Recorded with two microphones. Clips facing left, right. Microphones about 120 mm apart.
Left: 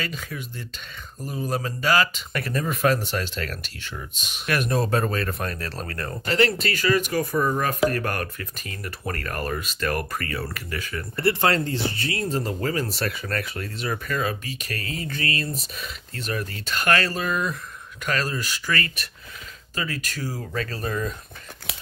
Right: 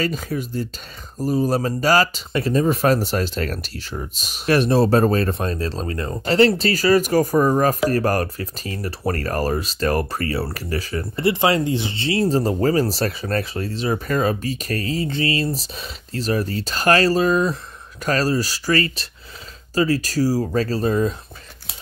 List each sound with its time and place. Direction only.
0.0 s speech: 40° right (ahead or behind)
2.3 s speech: 25° right (ahead or behind)
6.2 s speech: 30° right (ahead or behind)
11.1 s speech: 15° right (ahead or behind)